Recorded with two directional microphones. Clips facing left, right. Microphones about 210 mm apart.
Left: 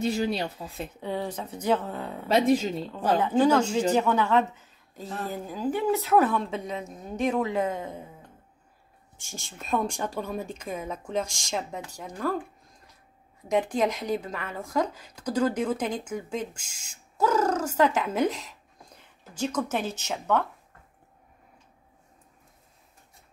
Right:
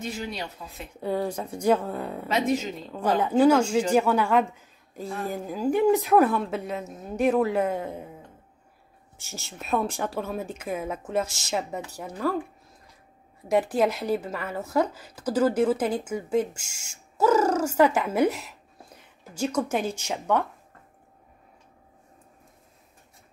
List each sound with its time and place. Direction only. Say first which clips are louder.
0.0 s speech: left 6 dB; 35° left (ahead or behind)
1.0 s speech: right 5 dB; 10° right (ahead or behind)
9.3 s speech: right 1 dB; 5° right (ahead or behind)
13.5 s speech: right 2 dB; 10° right (ahead or behind)